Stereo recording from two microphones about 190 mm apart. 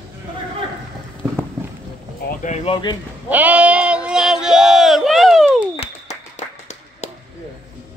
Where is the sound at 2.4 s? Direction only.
35° left (ahead or behind).